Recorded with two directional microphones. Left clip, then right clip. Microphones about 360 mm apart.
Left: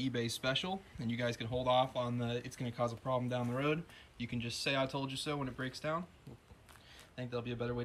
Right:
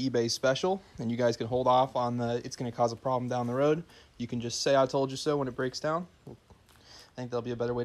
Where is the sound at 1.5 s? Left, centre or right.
Centre.